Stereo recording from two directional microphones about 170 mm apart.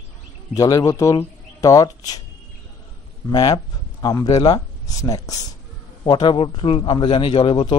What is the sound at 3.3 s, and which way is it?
Speech, 20° left (ahead or behind).